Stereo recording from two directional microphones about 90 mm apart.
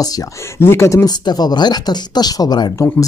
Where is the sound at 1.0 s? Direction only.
50° left (ahead or behind).